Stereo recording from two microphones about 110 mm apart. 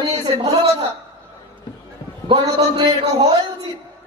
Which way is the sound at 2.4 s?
35° right (ahead or behind).